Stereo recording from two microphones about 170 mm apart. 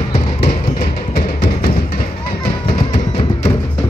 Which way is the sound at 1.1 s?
60° left (ahead or behind).